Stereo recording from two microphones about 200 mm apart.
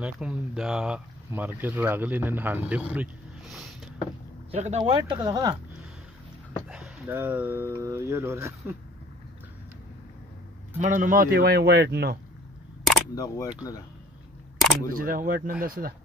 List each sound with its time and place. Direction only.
0.0 s speech: 5° right (ahead or behind)
4.5 s speech: 30° right (ahead or behind)
6.7 s speech: 5° right (ahead or behind)
10.8 s speech: 40° right (ahead or behind)
13.1 s speech: 20° left (ahead or behind)
14.9 s speech: 45° right (ahead or behind)